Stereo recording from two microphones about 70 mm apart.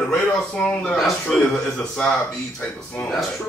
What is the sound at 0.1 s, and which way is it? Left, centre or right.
Speech, centre.